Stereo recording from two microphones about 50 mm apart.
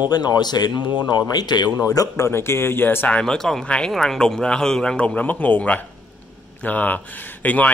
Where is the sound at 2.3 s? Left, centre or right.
Left.